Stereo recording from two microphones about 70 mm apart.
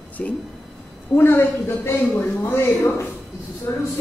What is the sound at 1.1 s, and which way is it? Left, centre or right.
Speech, left.